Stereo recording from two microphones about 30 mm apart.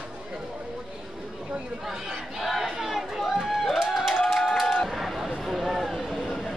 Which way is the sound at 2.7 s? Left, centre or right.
Centre.